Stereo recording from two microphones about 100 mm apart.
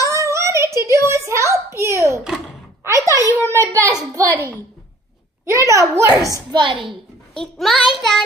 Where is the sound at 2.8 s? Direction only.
30° right (ahead or behind).